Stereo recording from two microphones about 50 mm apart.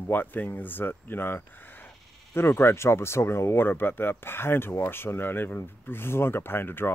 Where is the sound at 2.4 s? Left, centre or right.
Left.